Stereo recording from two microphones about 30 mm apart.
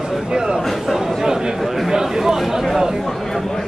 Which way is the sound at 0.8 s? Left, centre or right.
Centre.